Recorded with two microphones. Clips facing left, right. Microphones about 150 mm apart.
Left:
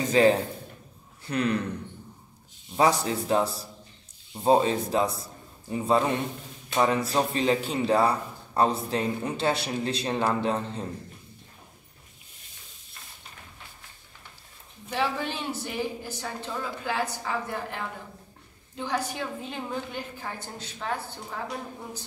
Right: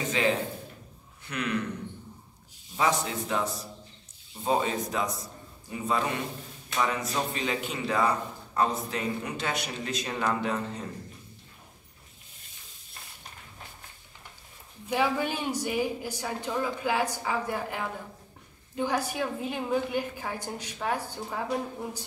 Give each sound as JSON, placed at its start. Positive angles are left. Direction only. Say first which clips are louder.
{"t": 0.1, "sound": "a man's voice", "louder": "left 8 dB", "side_deg": 40}
{"t": 2.7, "sound": "a man's voice", "louder": "left 4 dB", "side_deg": 35}
{"t": 14.9, "sound": "speech", "louder": "right 2 dB", "side_deg": -10}